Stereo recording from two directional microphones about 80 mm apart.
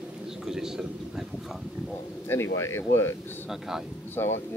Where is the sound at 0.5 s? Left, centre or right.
Centre.